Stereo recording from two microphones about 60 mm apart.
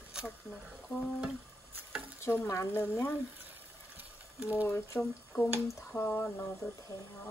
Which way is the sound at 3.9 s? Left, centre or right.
Right.